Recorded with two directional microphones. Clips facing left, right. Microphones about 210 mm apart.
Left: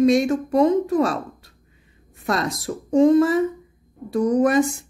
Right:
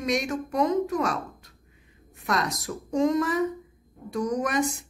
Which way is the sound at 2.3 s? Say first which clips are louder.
Left 4 dB; 30° left (ahead or behind).